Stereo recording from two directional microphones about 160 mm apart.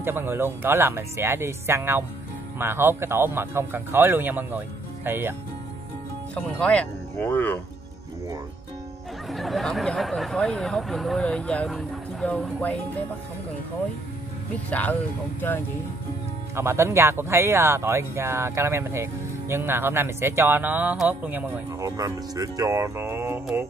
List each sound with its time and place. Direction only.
0.0 s speech: 15° right (ahead or behind)
6.3 s speech: 5° left (ahead or behind)
9.3 s speech: centre (ahead or behind)
14.7 s speech: 10° left (ahead or behind)
16.5 s speech: 15° right (ahead or behind)
21.8 s speech: 20° right (ahead or behind)